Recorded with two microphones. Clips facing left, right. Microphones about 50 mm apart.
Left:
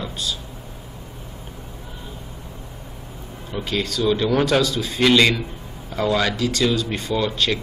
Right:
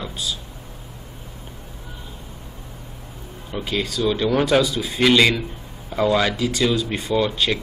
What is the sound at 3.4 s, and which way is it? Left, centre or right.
Speech, centre.